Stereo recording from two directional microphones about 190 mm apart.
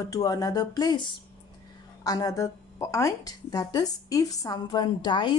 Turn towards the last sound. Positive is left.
turn(degrees=25)  # may be behind; listen again after turning